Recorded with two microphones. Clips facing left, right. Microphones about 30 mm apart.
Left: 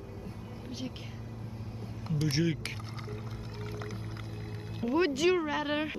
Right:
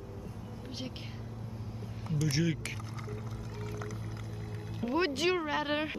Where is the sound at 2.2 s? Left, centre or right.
Centre.